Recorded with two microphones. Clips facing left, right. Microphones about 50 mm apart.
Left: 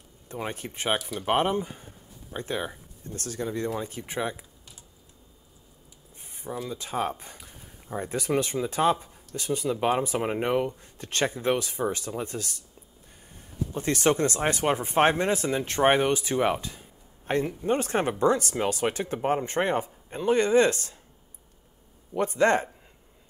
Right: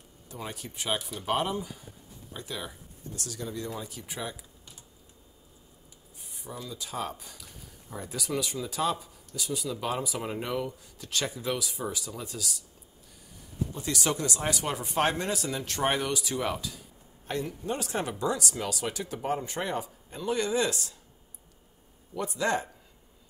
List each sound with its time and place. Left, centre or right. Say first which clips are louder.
0.3 s speech: left 6 dB; left
6.3 s speech: left 6 dB; left
13.7 s speech: left 8 dB; left
22.1 s speech: left 6 dB; left